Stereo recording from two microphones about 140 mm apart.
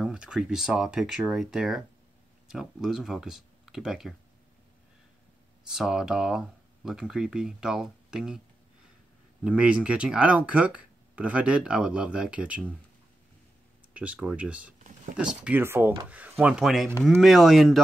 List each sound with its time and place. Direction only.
0.0 s speech: 5° right (ahead or behind)
5.7 s speech: 5° right (ahead or behind)
9.4 s speech: 10° right (ahead or behind)
13.9 s speech: 10° right (ahead or behind)
14.8 s a sound: 65° right (ahead or behind)
15.1 s speech: 5° right (ahead or behind)